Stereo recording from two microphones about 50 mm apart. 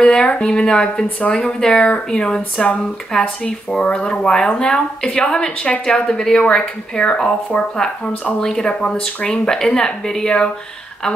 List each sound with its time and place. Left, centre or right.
0.0 s speech: centre